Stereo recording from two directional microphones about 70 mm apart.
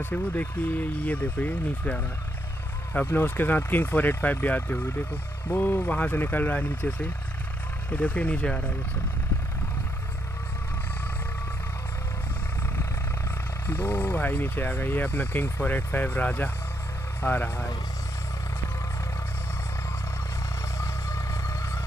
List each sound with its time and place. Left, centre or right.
0.0 s speech: left
13.7 s speech: left